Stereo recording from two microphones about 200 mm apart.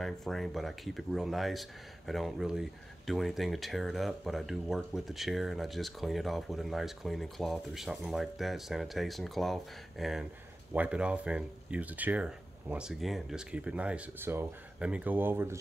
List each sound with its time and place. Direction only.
0.0 s speech: centre (ahead or behind)